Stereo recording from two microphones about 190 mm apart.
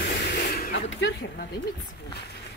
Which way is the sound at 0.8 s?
75° left (ahead or behind).